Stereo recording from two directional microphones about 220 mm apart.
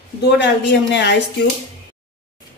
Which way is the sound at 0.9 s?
50° left (ahead or behind).